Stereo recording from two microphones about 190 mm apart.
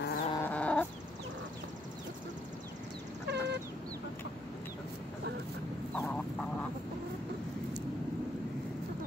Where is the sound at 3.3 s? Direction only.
65° right (ahead or behind).